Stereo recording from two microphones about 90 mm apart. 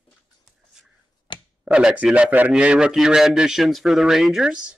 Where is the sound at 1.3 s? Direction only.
60° left (ahead or behind).